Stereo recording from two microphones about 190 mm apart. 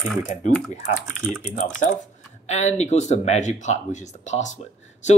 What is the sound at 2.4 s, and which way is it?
Speech, 35° left (ahead or behind).